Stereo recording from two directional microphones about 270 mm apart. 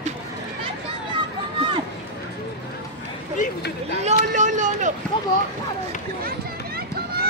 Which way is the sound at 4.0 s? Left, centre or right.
Right.